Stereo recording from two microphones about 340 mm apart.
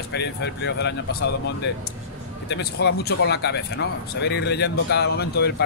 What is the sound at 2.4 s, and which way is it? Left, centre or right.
Speech, left.